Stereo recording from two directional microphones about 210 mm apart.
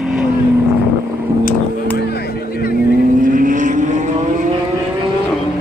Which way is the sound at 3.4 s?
40° right (ahead or behind).